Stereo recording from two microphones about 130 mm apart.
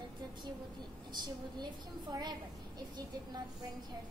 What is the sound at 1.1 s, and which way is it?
A woman's voice, 35° right (ahead or behind).